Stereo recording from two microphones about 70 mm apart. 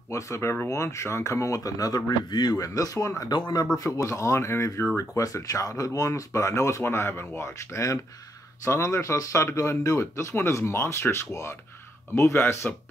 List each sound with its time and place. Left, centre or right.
0.1 s speech: left
3.3 s speech: left
3.7 s speech: left